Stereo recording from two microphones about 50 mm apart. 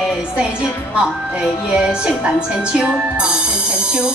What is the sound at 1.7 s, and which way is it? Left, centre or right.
A woman's voice, centre.